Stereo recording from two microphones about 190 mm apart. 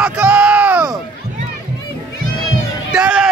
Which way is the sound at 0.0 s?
5° right (ahead or behind).